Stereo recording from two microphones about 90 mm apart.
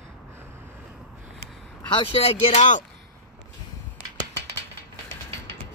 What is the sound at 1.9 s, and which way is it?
Speech, 80° left.